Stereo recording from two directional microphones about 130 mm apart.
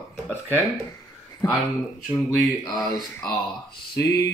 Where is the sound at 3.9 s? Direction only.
25° left (ahead or behind).